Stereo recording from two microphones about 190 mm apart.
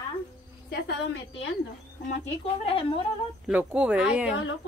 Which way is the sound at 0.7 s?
60° left (ahead or behind).